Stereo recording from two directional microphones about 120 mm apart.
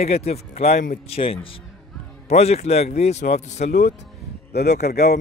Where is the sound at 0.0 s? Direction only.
65° left (ahead or behind); by 1.6 s 50° left (ahead or behind).